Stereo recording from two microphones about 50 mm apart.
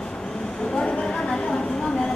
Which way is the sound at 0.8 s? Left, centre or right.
Left.